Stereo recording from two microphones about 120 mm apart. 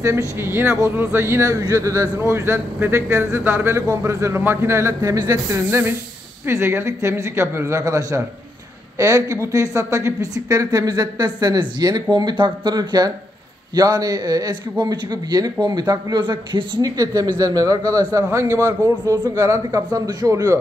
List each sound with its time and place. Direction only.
0.4 s speech: 20° right (ahead or behind)
5.7 s speech: 20° right (ahead or behind)